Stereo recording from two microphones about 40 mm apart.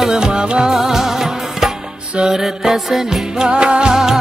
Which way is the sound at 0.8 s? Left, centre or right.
Centre.